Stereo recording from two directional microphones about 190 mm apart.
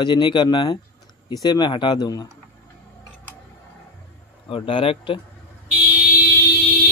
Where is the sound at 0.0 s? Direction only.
25° left (ahead or behind).